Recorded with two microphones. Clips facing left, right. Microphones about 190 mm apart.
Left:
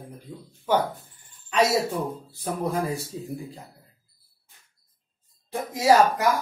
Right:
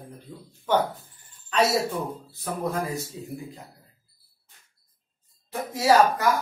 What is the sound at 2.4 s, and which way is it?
A man's voice, 25° left (ahead or behind).